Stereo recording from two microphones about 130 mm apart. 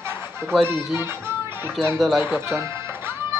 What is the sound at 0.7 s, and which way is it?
Speech, centre (ahead or behind).